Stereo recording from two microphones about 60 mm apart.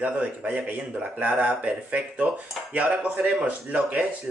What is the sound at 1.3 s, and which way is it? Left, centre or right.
Speech, centre.